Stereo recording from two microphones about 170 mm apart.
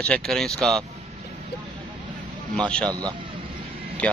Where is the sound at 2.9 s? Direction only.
20° right (ahead or behind).